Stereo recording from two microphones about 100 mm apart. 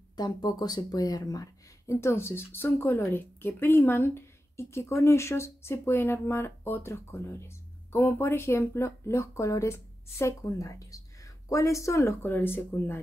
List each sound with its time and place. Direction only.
0.1 s speech: 45° left (ahead or behind); by 13.0 s 20° left (ahead or behind)